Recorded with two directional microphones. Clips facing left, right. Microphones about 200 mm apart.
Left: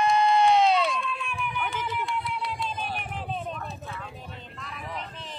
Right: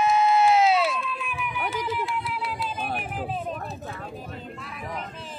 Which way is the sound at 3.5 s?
40° right (ahead or behind).